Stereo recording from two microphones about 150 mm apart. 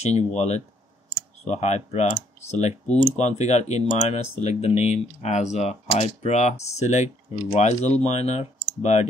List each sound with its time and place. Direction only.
0.0 s speech: 50° left (ahead or behind)